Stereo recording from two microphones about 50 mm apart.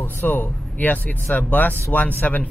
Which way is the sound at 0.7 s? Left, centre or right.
Left.